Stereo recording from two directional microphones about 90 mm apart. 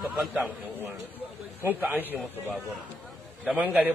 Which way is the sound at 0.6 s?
25° right (ahead or behind).